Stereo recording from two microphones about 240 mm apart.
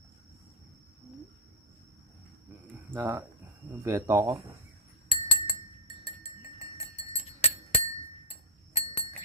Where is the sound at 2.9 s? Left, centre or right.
Centre.